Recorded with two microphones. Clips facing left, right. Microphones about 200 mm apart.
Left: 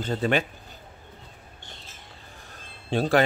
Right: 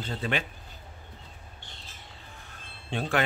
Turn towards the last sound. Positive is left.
turn(degrees=35)  # may be behind; listen again after turning